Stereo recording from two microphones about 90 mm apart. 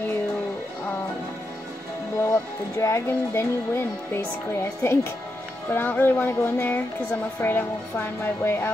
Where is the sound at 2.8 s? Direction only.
30° left (ahead or behind).